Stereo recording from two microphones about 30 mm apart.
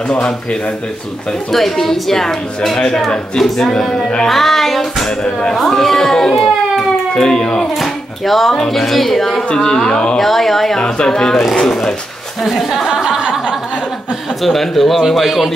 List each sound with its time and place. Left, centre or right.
1.5 s a woman's voice: centre
4.3 s music: centre
5.5 s a woman's voice: centre
7.2 s speech: left
7.8 s a woman's voice: centre
9.6 s speech: left
10.1 s a woman's voice: centre
10.8 s speech: left
11.5 s a woman's voice: centre
12.4 s music: centre
14.4 s music: centre